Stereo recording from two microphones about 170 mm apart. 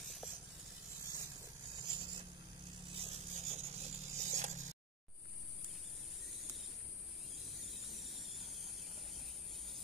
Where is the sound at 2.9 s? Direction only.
40° right (ahead or behind).